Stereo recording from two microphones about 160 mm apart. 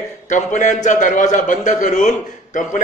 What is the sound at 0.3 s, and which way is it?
A man's voice, 50° left (ahead or behind).